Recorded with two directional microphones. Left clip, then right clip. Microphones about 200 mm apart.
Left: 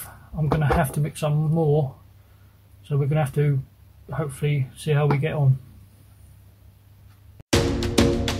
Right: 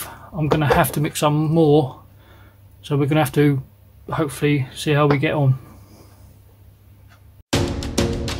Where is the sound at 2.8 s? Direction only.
40° right (ahead or behind).